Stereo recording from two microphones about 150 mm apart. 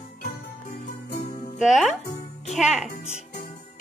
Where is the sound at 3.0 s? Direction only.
45° left (ahead or behind).